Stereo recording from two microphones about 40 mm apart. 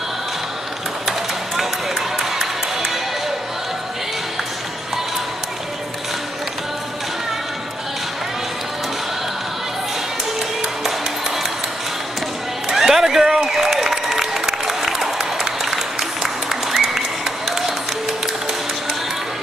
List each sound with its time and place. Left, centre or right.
1.6 s run: centre
10.8 s music: centre
12.6 s applause: centre
17.5 s a sound: centre